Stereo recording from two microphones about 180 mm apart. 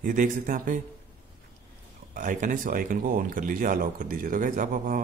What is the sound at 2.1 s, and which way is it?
Speech, 45° right (ahead or behind).